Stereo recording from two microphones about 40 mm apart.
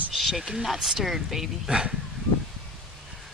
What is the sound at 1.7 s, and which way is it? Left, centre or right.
Speech, centre.